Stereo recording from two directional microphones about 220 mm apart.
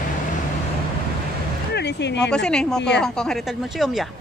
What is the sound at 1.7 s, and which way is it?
Speech, 50° left (ahead or behind).